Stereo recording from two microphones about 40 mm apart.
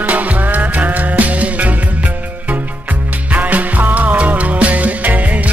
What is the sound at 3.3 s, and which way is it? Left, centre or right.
Music, right.